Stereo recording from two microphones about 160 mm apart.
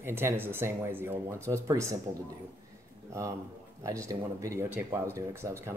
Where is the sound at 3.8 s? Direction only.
20° right (ahead or behind).